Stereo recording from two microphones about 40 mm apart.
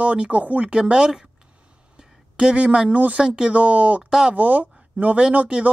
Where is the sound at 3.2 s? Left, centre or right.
Centre.